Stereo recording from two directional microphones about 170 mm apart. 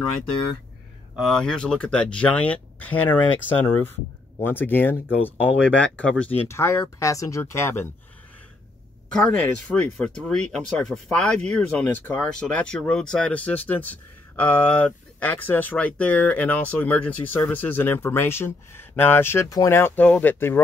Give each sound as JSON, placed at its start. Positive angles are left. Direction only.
{"t": 1.1, "sound": "speech", "side_deg": 0}
{"t": 9.1, "sound": "speech", "side_deg": 5}